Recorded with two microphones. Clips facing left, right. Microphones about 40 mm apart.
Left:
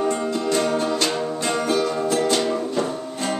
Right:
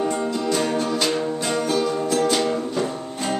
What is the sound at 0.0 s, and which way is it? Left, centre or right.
Music, centre.